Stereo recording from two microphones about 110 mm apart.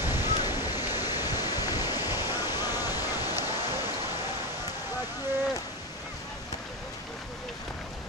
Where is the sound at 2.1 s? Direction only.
35° left (ahead or behind).